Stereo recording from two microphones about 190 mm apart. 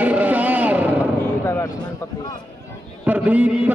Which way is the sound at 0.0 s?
10° right (ahead or behind).